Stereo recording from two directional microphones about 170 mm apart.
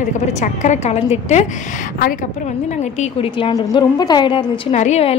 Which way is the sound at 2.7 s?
40° left (ahead or behind).